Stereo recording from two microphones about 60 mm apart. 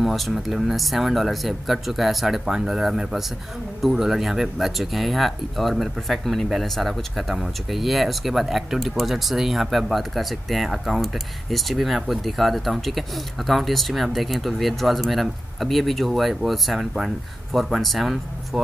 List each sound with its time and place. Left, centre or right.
0.0 s speech: centre